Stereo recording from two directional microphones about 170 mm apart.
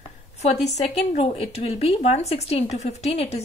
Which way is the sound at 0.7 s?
40° left (ahead or behind).